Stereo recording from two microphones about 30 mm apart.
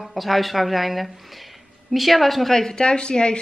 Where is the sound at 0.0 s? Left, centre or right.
Centre.